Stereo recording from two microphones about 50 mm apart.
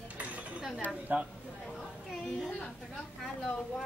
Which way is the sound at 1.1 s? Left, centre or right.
Right.